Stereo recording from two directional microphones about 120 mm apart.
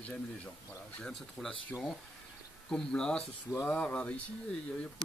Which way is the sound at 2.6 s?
5° left (ahead or behind).